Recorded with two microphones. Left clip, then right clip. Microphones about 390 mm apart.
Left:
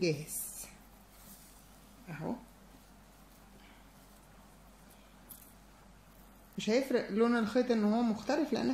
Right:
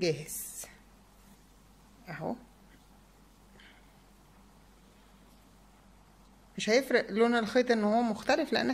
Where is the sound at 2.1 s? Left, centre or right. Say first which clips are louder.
Right 5 dB; right.